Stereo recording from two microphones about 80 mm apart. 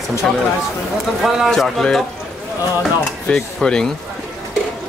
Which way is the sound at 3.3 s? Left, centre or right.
Centre.